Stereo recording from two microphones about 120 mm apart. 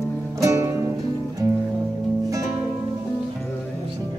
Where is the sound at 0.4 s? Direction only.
25° right (ahead or behind).